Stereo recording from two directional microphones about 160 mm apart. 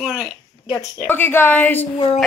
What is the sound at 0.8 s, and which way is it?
A woman's voice, 15° left (ahead or behind).